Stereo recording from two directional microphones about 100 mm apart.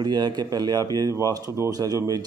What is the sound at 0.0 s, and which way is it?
Speech, 45° right (ahead or behind).